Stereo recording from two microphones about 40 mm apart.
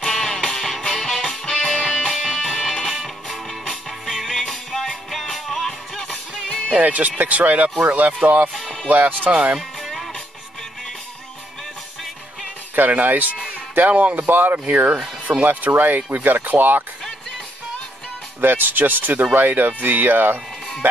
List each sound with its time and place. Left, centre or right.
0.0 s music: centre
0.6 s music: centre
2.9 s music: centre
6.8 s speech: right
8.8 s speech: right
9.3 s speech: right
9.6 s music: centre
12.7 s speech: right
18.4 s speech: right